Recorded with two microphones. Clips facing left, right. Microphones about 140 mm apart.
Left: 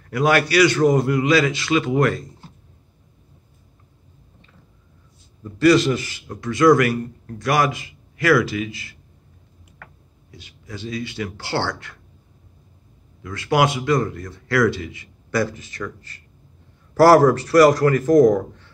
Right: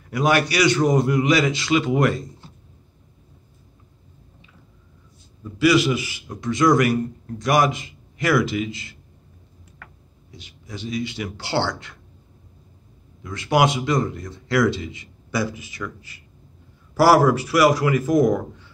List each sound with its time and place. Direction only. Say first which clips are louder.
0.1 s a man's voice: left 2 dB; 15° right (ahead or behind)
5.4 s a man's voice: left 2 dB; 5° right (ahead or behind); by 8.9 s 25° right (ahead or behind)
10.3 s a man's voice: left 1 dB; 20° right (ahead or behind)
13.2 s a man's voice: even; 20° right (ahead or behind)
15.3 s a man's voice: left 3 dB; 10° right (ahead or behind)